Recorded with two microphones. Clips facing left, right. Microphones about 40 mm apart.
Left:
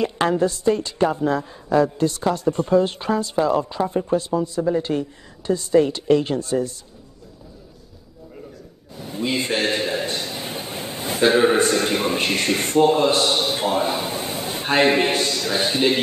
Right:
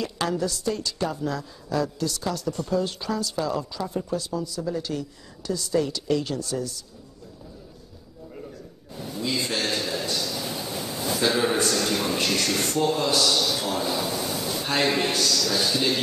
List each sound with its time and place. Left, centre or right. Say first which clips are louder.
0.0 s a woman's voice: left 7 dB; left
9.0 s a man's voice: left 4 dB; left